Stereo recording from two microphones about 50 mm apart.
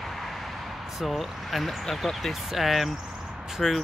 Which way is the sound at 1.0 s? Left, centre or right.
Centre.